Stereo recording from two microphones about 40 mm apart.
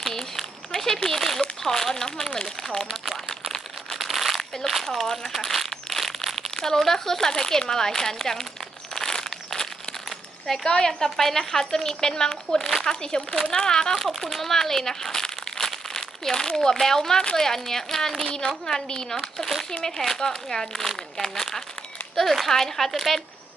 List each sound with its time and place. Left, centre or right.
0.0 s a sound: centre
1.6 s speech: centre
2.9 s crumpling: centre
4.6 s speech: centre
5.3 s crumpling: centre
6.5 s crumpling: centre
6.8 s speech: centre
8.9 s a sound: centre
10.6 s speech: centre
13.9 s speech: centre
18.2 s a woman's voice: centre